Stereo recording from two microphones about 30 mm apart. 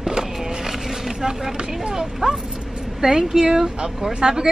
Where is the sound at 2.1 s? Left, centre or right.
Centre.